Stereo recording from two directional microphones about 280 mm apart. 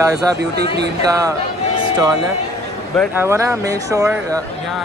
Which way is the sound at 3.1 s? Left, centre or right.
Centre.